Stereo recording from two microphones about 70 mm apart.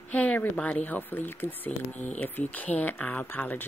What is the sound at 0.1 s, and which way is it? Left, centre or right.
Speech, left.